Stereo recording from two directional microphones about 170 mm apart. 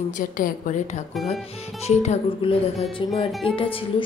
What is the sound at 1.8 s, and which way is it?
Speech, 40° left (ahead or behind).